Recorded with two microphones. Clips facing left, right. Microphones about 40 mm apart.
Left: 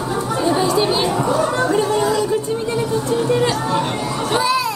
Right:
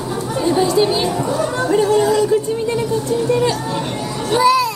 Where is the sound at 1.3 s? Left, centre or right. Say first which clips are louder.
Left 1 dB; centre.